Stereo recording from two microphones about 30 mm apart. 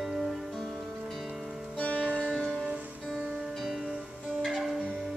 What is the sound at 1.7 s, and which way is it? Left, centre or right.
Music, left.